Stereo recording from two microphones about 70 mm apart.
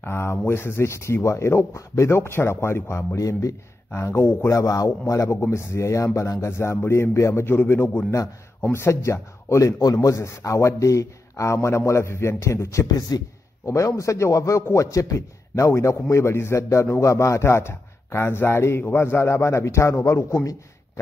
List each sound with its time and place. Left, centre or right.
0.0 s speech: left
3.2 s speech: left
4.5 s a man's voice: left
7.4 s a man's voice: left
13.1 s a man's voice: left
13.7 s a man's voice: left